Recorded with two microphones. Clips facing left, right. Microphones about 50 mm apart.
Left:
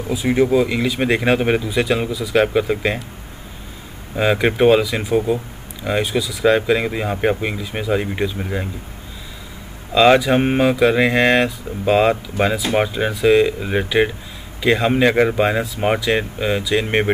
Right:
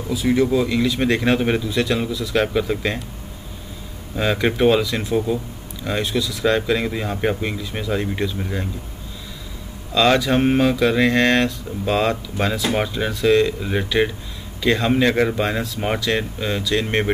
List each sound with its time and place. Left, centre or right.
0.1 s speech: left
4.1 s speech: centre
9.9 s speech: centre